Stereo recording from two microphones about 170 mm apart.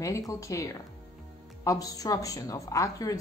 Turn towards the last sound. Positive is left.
turn(degrees=20)  # may be behind; listen again after turning